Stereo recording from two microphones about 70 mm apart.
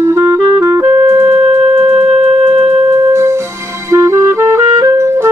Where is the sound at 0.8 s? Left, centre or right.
Right.